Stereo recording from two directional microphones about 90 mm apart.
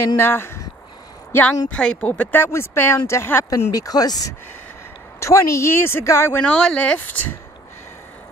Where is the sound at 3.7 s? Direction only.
45° left (ahead or behind).